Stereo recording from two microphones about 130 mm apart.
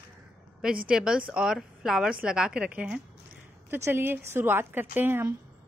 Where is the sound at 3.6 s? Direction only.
20° right (ahead or behind).